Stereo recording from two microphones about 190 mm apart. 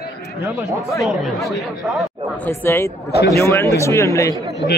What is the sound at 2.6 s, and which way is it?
A man's voice, 15° left (ahead or behind).